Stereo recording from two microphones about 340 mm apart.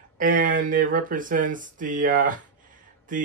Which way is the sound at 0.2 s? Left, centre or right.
Right.